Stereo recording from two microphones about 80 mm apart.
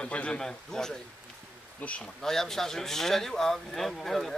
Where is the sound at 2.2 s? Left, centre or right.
Centre.